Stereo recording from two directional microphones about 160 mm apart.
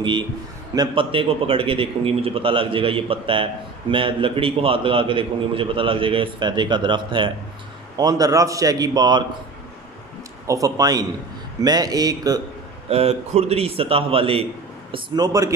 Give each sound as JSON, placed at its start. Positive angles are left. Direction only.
{"t": 0.7, "sound": "a man's voice", "side_deg": -35}
{"t": 10.4, "sound": "a man's voice", "side_deg": -20}
{"t": 12.9, "sound": "a man's voice", "side_deg": -40}